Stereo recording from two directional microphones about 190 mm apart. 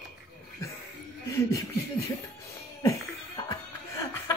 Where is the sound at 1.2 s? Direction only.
15° left (ahead or behind).